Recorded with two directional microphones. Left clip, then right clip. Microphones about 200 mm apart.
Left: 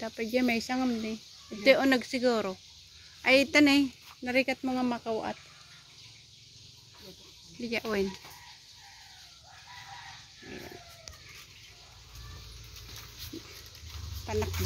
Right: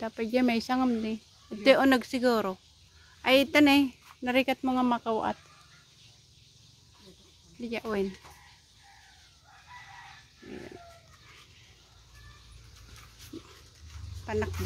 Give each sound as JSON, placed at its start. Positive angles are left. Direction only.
{"t": 0.0, "sound": "speech", "side_deg": -15}
{"t": 7.6, "sound": "speech", "side_deg": -5}
{"t": 14.2, "sound": "speech", "side_deg": -10}